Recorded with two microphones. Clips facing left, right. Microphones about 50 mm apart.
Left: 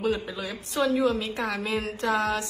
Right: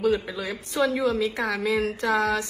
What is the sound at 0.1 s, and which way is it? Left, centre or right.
A woman's voice, right.